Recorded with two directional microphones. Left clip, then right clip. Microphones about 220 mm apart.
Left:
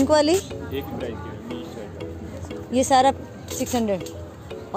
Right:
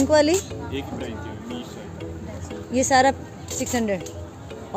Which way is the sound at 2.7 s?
10° left (ahead or behind).